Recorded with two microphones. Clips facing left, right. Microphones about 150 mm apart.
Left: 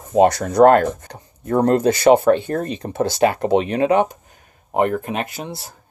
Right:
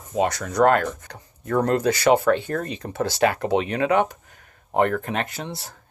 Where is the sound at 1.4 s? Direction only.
25° left (ahead or behind).